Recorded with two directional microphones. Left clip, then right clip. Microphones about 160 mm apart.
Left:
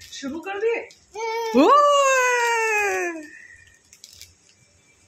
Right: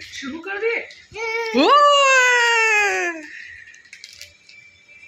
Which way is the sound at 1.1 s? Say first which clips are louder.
Right 2 dB; 20° left (ahead or behind).